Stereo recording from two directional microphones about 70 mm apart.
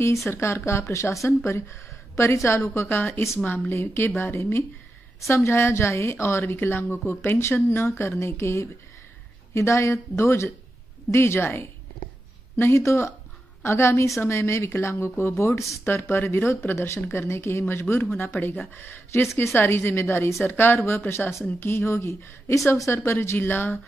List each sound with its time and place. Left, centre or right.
0.3 s a woman's voice: left
20.4 s a woman's voice: left